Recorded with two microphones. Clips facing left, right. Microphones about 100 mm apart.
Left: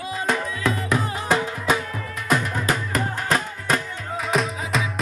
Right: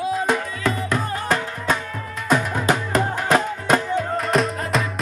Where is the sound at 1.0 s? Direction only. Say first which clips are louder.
Even; 15° left (ahead or behind).